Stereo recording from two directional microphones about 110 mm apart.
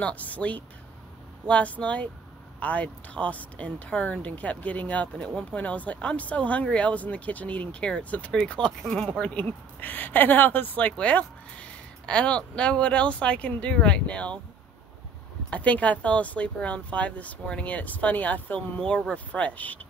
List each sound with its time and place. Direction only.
0.0 s speech: 15° left (ahead or behind)
15.5 s speech: 10° left (ahead or behind)